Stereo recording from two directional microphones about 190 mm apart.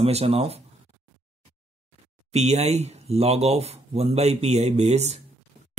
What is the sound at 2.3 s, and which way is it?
Speech, 35° right (ahead or behind).